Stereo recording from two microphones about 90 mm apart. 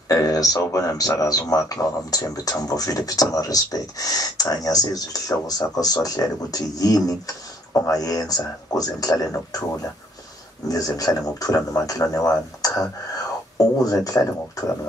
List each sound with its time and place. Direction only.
0.1 s speech: 45° left (ahead or behind)